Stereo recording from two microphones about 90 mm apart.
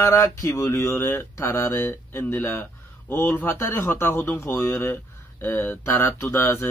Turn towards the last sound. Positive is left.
turn(degrees=25)  # may be behind; listen again after turning